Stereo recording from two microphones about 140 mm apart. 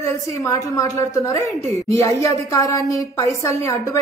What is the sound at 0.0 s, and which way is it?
A woman's voice, 20° left (ahead or behind).